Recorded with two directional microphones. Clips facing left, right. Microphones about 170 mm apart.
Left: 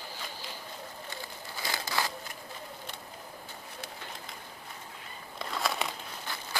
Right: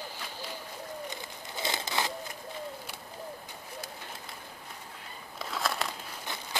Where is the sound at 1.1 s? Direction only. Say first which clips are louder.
Right 1 dB; 20° right (ahead or behind).